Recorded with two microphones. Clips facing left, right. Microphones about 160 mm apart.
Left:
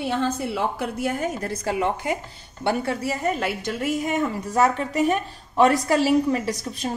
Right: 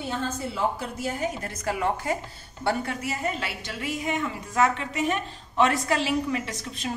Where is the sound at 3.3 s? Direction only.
50° left (ahead or behind).